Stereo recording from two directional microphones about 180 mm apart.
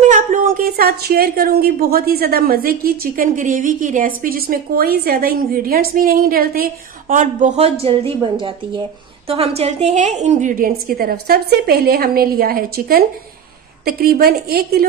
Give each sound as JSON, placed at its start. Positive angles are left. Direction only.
{"t": 0.1, "sound": "a woman's voice", "side_deg": -50}